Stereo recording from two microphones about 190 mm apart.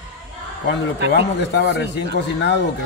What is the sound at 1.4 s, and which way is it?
A man's voice, 65° left (ahead or behind).